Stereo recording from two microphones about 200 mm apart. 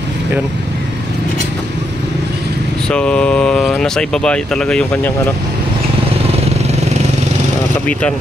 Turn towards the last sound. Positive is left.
turn(degrees=-30)  # may be behind; listen again after turning